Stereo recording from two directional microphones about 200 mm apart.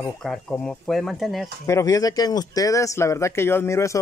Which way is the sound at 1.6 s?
15° left (ahead or behind).